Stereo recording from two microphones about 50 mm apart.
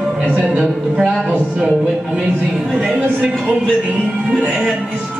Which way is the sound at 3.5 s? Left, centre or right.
Right.